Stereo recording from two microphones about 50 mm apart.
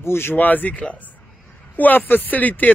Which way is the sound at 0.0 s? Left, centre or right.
Left.